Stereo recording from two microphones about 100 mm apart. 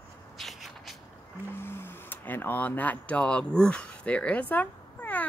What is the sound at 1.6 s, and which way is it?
Speech, 25° left (ahead or behind).